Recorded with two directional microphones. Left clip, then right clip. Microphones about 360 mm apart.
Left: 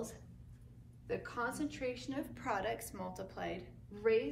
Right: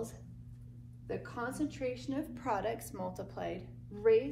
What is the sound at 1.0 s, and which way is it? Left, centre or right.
A woman's voice, centre.